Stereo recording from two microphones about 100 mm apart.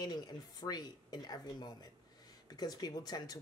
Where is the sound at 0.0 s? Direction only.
40° left (ahead or behind).